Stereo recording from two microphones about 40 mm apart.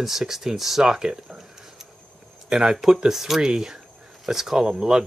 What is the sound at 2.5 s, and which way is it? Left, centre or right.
Speech, centre.